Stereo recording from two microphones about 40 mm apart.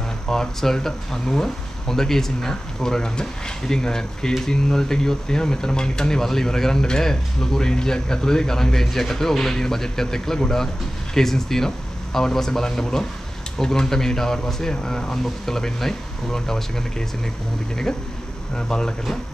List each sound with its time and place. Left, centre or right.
0.3 s speech: centre
18.7 s speech: centre